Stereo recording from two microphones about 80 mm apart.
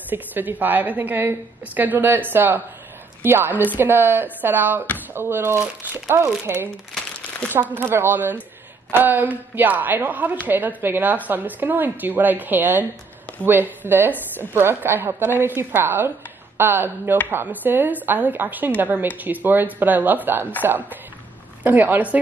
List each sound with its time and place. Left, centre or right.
0.1 s a woman's voice: right
6.9 s crumpling: centre
7.5 s a woman's voice: right